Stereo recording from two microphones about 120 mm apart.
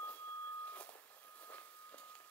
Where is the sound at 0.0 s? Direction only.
15° left (ahead or behind).